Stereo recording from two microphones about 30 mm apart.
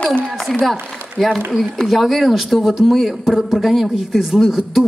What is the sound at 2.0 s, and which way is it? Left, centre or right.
A woman's voice, centre.